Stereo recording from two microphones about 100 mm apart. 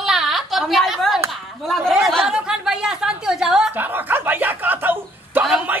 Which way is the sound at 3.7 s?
20° right (ahead or behind).